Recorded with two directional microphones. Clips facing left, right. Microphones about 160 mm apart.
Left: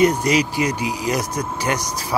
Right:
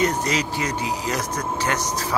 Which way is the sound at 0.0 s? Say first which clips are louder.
Left 6 dB; 10° left (ahead or behind).